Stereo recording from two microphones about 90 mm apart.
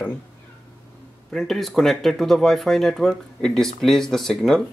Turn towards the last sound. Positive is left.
turn(degrees=5)  # may be behind; listen again after turning